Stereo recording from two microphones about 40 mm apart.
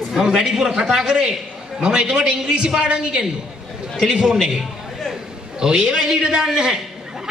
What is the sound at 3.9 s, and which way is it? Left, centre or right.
Speech, centre.